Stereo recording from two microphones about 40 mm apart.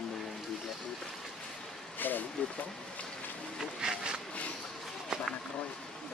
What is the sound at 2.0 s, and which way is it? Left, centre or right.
Vehicle, left.